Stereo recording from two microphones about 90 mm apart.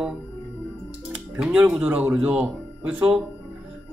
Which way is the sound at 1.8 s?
20° right (ahead or behind).